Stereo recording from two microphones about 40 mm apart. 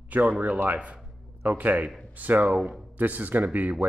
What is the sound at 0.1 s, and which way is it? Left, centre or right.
A man's voice, right.